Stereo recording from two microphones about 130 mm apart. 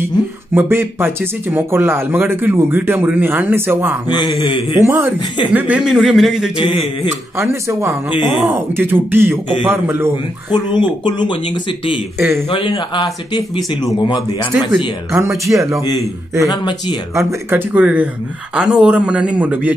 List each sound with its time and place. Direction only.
0.6 s speech: 20° right (ahead or behind)
4.3 s speech: 40° left (ahead or behind)
4.8 s a man's voice: 20° right (ahead or behind); by 6.5 s 5° right (ahead or behind)
6.5 s speech: 40° left (ahead or behind)
7.3 s speech: 20° right (ahead or behind)
10.5 s speech: 35° left (ahead or behind)
12.2 s speech: 20° right (ahead or behind)
12.4 s speech: 40° left (ahead or behind)
15.5 s speech: 25° right (ahead or behind)
16.4 s speech: 35° left (ahead or behind)
17.1 s speech: 20° right (ahead or behind)